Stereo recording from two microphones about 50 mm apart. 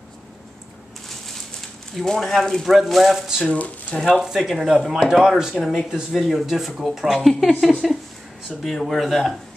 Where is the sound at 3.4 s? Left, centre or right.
Left.